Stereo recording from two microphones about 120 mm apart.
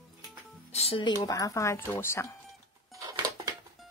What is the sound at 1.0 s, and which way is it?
Speech, 35° left (ahead or behind).